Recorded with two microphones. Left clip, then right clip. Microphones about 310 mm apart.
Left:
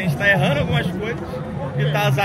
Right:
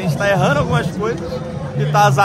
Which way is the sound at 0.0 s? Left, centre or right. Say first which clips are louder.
Right 2 dB; centre.